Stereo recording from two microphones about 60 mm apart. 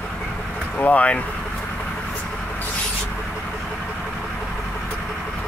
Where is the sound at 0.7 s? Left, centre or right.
Left.